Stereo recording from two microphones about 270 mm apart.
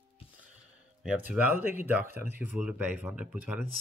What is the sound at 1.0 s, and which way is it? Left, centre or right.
Speech, centre.